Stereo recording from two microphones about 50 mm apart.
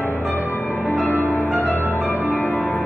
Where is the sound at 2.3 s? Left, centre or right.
Left.